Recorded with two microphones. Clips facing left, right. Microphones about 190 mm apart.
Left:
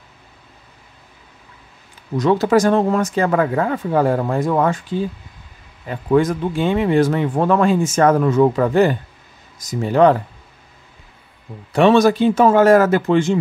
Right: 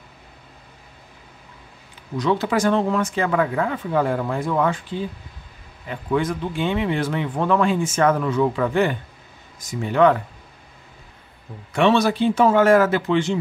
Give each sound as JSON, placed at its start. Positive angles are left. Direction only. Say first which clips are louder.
{"t": 2.1, "sound": "speech", "louder": "left 6 dB", "side_deg": 45}
{"t": 11.7, "sound": "speech", "louder": "left 5 dB", "side_deg": 45}